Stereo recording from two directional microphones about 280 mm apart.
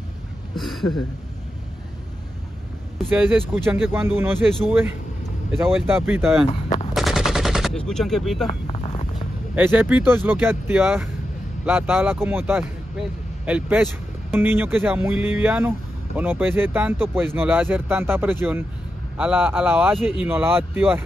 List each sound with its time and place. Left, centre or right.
0.6 s speech: centre
3.0 s speech: centre
6.7 s machine gun: left
7.0 s gunshot: centre
8.5 s boat: left
9.6 s speech: centre